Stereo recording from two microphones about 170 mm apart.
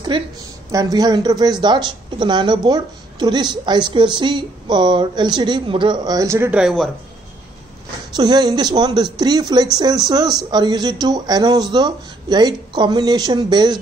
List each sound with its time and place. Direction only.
0.1 s a woman's voice: 30° right (ahead or behind); by 6.6 s 15° right (ahead or behind)
6.6 s speech: centre (ahead or behind)
8.2 s a woman's voice: 25° right (ahead or behind)